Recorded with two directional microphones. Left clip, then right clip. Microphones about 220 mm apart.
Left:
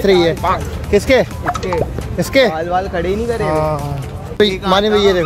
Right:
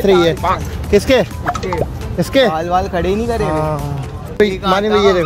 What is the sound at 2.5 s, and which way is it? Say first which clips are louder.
Speech: right 2 dB; 50° right (ahead or behind).